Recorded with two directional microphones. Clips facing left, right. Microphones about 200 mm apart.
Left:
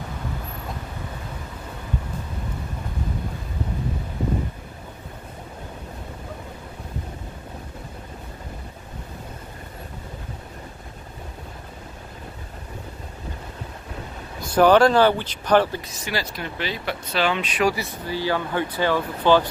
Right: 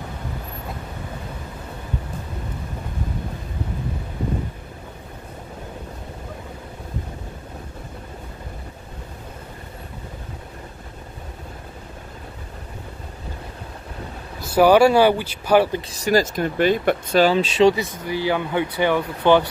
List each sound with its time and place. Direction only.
14.4 s speech: 10° right (ahead or behind)
15.9 s speech: 40° right (ahead or behind); by 19.4 s 20° right (ahead or behind)